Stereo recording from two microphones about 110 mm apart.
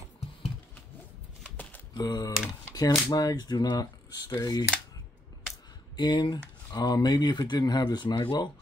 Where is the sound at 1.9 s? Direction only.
40° left (ahead or behind).